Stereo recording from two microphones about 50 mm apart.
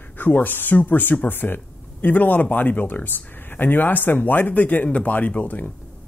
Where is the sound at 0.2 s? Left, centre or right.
Left.